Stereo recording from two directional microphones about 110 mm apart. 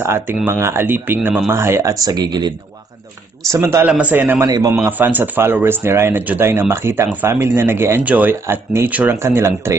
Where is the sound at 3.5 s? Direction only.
25° right (ahead or behind).